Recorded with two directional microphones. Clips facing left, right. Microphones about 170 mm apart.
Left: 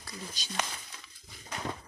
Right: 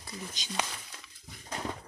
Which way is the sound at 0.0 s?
20° right (ahead or behind).